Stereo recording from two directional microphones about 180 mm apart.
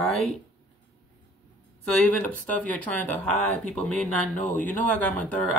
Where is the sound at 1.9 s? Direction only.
5° left (ahead or behind).